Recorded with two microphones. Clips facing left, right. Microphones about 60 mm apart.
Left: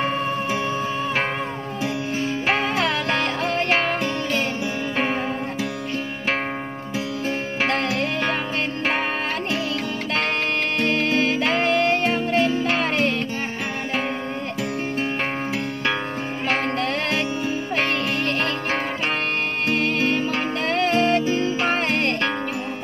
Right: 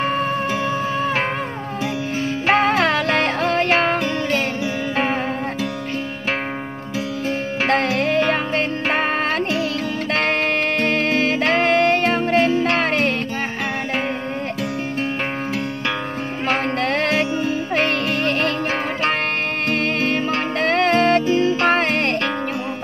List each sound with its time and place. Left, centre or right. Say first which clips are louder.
2.4 s music: right 7 dB; right
7.6 s music: right 4 dB; right
10.8 s music: left 1 dB; right
16.8 s music: right 4 dB; right
20.0 s music: right 2 dB; right